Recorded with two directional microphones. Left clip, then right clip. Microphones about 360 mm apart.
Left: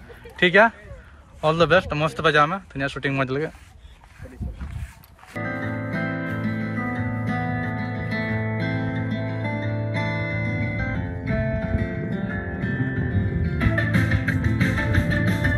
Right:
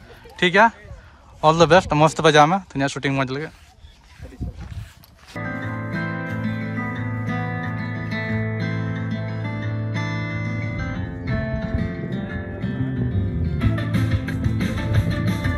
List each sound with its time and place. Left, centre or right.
0.4 s speech: centre
5.4 s music: left
12.5 s music: centre